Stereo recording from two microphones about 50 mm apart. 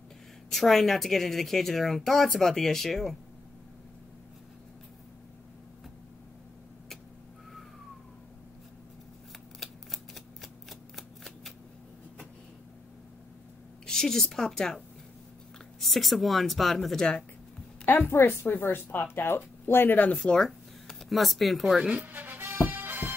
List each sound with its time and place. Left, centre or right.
0.5 s a woman's voice: centre
9.6 s shuffling cards: centre
13.8 s a woman's voice: centre
15.8 s a woman's voice: centre
18.4 s speech: left
20.2 s speech: centre
21.7 s speech: centre
22.0 s music: right